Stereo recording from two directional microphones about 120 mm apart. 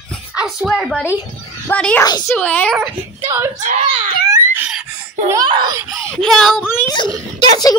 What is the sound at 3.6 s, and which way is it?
Speech, 90° right.